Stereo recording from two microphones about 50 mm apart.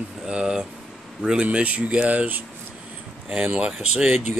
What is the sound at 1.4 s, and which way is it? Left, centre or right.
Speech, right.